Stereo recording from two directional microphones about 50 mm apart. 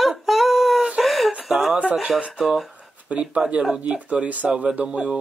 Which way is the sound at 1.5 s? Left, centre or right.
Centre.